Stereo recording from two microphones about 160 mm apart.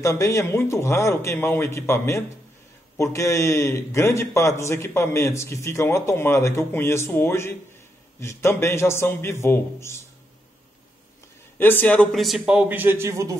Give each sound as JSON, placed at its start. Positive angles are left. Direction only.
{"t": 0.0, "sound": "a man's voice", "side_deg": 20}
{"t": 11.5, "sound": "a man's voice", "side_deg": 10}